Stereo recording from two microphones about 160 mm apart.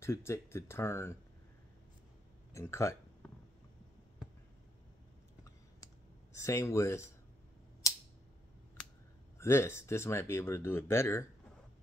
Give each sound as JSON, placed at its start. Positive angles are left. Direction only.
{"t": 0.0, "sound": "speech", "side_deg": 15}
{"t": 2.5, "sound": "speech", "side_deg": 15}
{"t": 6.3, "sound": "speech", "side_deg": 20}
{"t": 7.8, "sound": "a sound", "side_deg": 20}
{"t": 9.4, "sound": "speech", "side_deg": 15}